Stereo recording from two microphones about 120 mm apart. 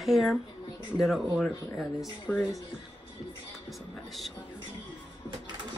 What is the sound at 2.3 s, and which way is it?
Speech, 15° left (ahead or behind).